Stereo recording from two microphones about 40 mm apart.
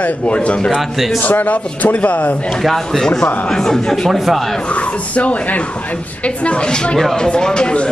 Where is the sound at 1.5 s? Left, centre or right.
Left.